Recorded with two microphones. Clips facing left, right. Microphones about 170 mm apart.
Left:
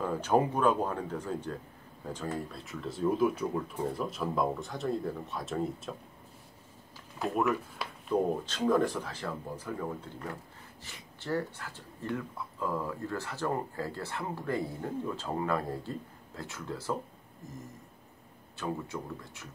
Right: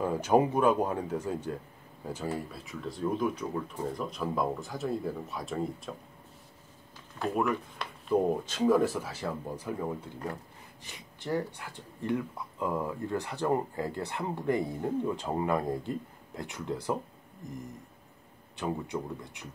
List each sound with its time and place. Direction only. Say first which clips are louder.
0.0 s speech: right 2 dB; 15° right (ahead or behind)
7.2 s speech: even; centre (ahead or behind); by 17.0 s 15° right (ahead or behind)
18.6 s speech: right 3 dB; 15° right (ahead or behind)